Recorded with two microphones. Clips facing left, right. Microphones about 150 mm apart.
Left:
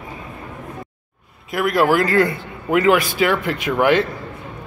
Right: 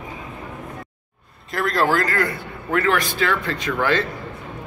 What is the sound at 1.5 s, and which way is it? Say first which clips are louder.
A man's voice: left 4 dB; 10° left (ahead or behind).